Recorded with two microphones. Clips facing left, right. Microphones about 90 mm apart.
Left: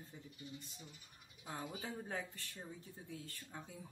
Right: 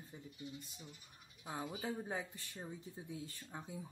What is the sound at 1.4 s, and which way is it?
Speech, 15° right (ahead or behind).